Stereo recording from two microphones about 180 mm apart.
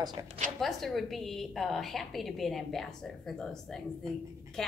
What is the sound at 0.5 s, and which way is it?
A woman's voice, centre (ahead or behind).